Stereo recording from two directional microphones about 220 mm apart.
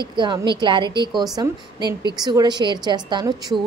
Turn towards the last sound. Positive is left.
turn(degrees=-20)  # may be behind; listen again after turning